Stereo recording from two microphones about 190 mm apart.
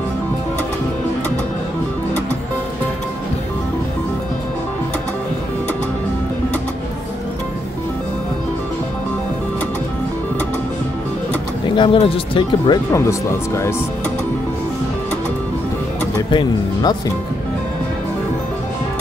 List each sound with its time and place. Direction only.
11.6 s speech: 25° left (ahead or behind)
16.3 s speech: 25° left (ahead or behind)